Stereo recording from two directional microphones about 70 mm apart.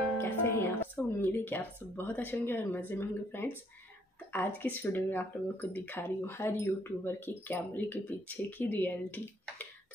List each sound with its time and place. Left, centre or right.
0.2 s speech: left